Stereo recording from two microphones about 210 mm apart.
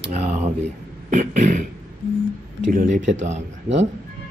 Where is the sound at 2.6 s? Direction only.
35° right (ahead or behind).